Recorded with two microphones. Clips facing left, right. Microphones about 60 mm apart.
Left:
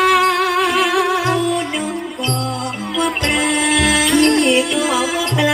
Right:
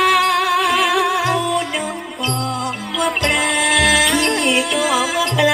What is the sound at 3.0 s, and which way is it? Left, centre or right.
Music, centre.